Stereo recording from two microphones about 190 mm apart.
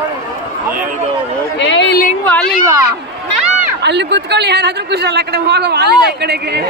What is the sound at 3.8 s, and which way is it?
A man's voice, 65° right (ahead or behind).